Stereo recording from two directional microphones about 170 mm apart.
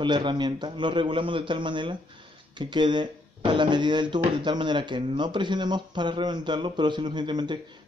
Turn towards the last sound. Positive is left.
turn(degrees=-25)  # may be behind; listen again after turning